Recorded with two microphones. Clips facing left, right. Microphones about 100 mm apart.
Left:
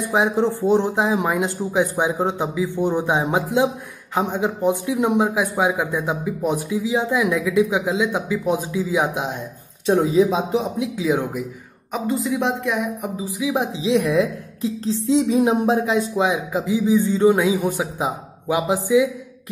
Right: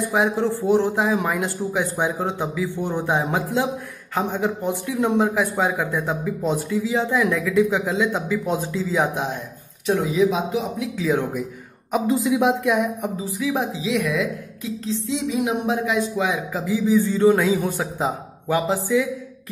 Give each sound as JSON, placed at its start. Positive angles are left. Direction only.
{"t": 0.1, "sound": "speech", "side_deg": 20}
{"t": 9.8, "sound": "speech", "side_deg": 30}
{"t": 11.0, "sound": "speech", "side_deg": 15}
{"t": 11.9, "sound": "a woman's voice", "side_deg": 0}
{"t": 13.2, "sound": "speech", "side_deg": 15}